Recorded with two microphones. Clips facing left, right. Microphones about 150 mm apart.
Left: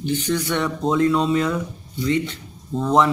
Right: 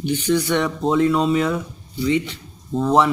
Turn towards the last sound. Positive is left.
turn(degrees=-5)  # may be behind; listen again after turning